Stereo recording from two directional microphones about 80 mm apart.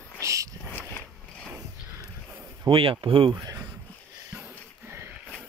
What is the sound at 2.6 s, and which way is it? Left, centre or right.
Speech, right.